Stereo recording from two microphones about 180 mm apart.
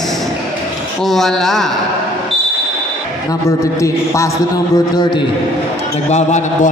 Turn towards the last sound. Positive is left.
turn(degrees=40)  # may be behind; listen again after turning